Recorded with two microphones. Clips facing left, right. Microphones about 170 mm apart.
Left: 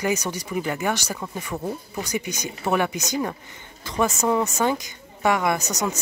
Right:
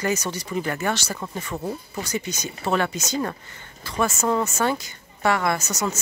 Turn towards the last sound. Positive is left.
turn(degrees=15)  # may be behind; listen again after turning